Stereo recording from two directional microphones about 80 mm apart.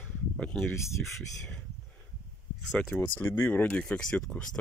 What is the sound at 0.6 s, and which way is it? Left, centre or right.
Speech, left.